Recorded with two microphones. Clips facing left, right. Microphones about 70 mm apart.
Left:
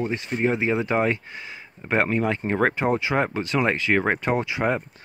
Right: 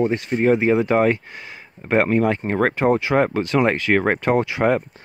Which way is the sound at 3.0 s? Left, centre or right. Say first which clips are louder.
Right 5 dB; right.